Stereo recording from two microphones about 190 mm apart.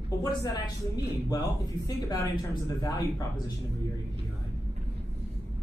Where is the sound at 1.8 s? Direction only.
20° left (ahead or behind).